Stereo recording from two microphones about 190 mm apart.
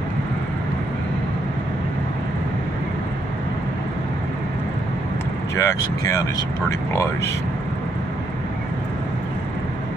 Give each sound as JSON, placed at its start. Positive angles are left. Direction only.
{"t": 5.6, "sound": "speech", "side_deg": 15}